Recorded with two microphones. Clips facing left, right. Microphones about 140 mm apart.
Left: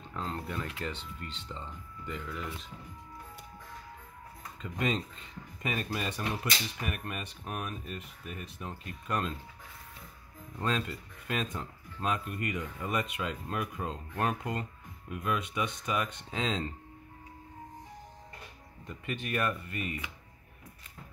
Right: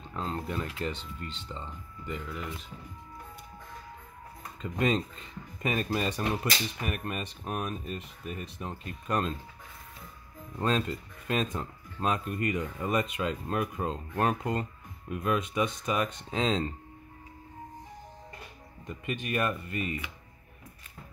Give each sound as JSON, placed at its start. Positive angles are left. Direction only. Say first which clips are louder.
{"t": 0.1, "sound": "speech", "louder": "right 3 dB", "side_deg": -25}
{"t": 4.6, "sound": "speech", "louder": "right 4 dB", "side_deg": -40}
{"t": 10.6, "sound": "speech", "louder": "right 4 dB", "side_deg": -35}
{"t": 18.9, "sound": "speech", "louder": "right 2 dB", "side_deg": -15}